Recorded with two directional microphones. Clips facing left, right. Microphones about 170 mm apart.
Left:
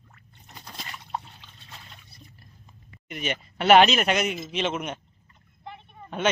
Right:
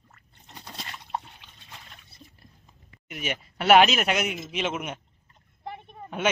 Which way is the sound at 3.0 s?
5° right (ahead or behind).